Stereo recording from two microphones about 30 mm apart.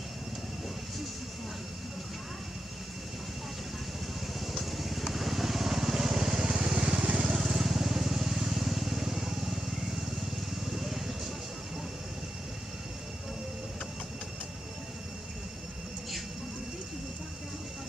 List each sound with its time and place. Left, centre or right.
4.5 s vehicle: centre; by 7.2 s right
7.4 s vehicle: centre
10.8 s vehicle: centre